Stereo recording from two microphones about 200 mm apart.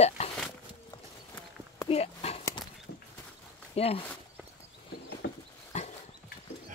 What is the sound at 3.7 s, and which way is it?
Speech, 30° left (ahead or behind).